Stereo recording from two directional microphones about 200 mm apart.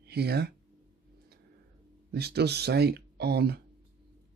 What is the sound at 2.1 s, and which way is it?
Speech, 55° right (ahead or behind).